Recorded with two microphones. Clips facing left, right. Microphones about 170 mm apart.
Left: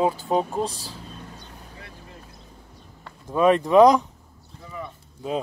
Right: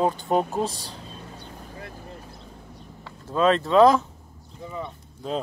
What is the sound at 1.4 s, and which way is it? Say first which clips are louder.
Boat: right 4 dB; 50° right (ahead or behind).